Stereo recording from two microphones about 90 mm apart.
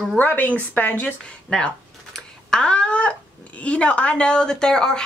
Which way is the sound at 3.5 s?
15° left (ahead or behind).